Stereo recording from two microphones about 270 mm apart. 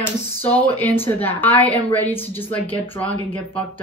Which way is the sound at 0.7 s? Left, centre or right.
Centre.